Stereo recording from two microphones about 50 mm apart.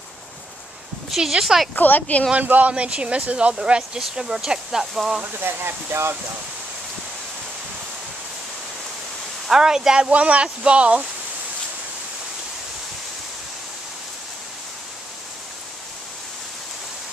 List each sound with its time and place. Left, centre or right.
1.1 s speech: centre
1.8 s speech: left
2.3 s speech: right
2.7 s speech: right; by 5.2 s centre
5.4 s speech: right
9.5 s speech: centre
10.0 s speech: right